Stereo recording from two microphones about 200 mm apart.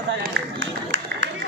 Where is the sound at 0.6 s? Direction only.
70° right (ahead or behind).